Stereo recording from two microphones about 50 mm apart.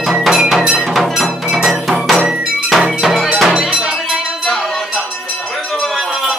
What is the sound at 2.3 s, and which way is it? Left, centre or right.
Music, centre.